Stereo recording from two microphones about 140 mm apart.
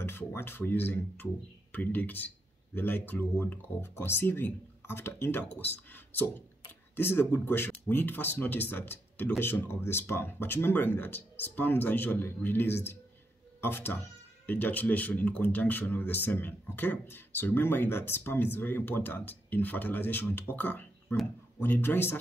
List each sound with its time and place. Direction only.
0.0 s speech: 15° left (ahead or behind)